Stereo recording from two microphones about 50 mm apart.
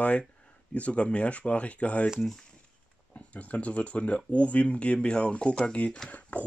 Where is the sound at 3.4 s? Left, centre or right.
Left.